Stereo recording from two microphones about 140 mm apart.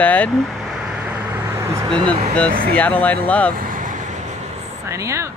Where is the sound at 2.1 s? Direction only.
10° left (ahead or behind).